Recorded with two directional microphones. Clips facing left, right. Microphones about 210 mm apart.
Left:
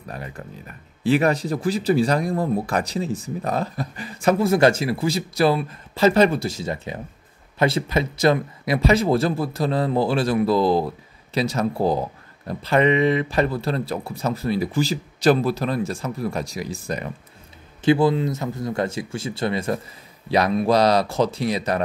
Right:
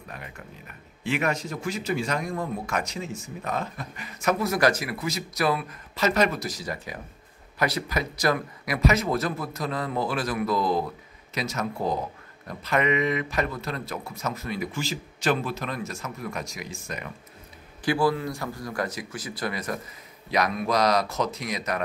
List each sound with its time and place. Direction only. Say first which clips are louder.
0.1 s speech: left 8 dB; 35° left (ahead or behind)
17.8 s speech: left 6 dB; 20° left (ahead or behind)